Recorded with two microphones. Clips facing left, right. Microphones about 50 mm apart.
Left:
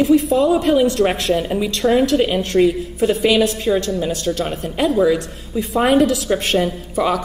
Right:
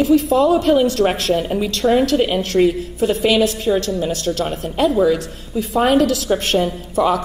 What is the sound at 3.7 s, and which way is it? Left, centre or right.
Speech, centre.